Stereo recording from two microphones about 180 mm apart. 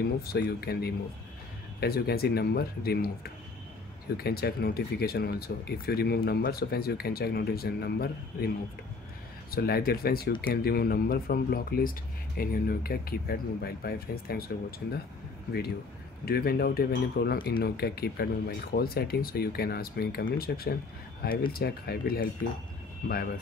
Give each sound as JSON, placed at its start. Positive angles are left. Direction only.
{"t": 0.0, "sound": "speech", "side_deg": 60}
{"t": 4.2, "sound": "speech", "side_deg": 60}
{"t": 9.5, "sound": "speech", "side_deg": 60}
{"t": 16.3, "sound": "speech", "side_deg": 60}